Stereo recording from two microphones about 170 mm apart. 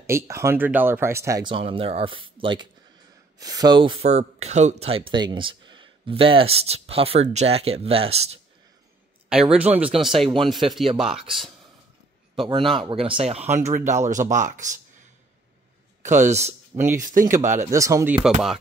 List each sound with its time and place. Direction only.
0.0 s speech: 15° right (ahead or behind); by 8.4 s 35° right (ahead or behind)
9.3 s speech: 5° right (ahead or behind)
12.4 s speech: 30° right (ahead or behind); by 14.8 s 45° right (ahead or behind)
16.0 s speech: 45° right (ahead or behind)
17.6 s speech: 20° right (ahead or behind)